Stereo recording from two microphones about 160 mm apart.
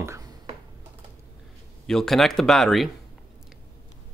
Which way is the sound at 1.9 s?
Centre (ahead or behind).